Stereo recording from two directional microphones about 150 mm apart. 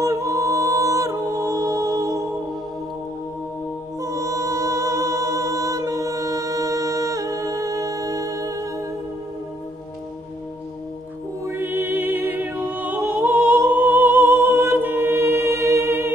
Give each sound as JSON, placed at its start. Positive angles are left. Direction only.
{"t": 0.0, "sound": "a capella", "side_deg": -20}
{"t": 4.0, "sound": "music", "side_deg": -20}
{"t": 11.4, "sound": "music", "side_deg": -15}